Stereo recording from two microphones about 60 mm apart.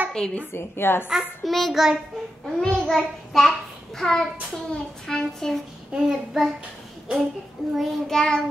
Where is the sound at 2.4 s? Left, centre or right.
Centre.